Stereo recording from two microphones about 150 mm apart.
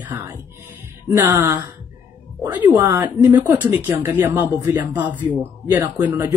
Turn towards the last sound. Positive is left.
turn(degrees=-15)  # may be behind; listen again after turning